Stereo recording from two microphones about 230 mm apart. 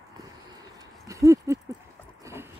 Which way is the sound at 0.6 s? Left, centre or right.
Centre.